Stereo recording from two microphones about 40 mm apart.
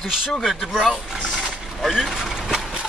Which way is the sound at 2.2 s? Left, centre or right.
Centre.